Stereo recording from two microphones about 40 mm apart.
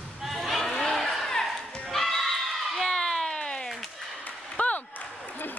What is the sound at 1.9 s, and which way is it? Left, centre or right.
Goat, centre.